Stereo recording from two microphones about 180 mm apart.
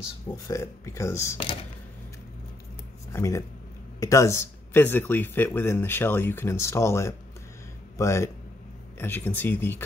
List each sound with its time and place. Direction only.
0.5 s speech: 15° left (ahead or behind)
3.1 s speech: 15° left (ahead or behind)